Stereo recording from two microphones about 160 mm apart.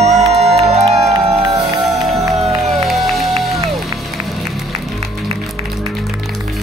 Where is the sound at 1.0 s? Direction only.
20° right (ahead or behind).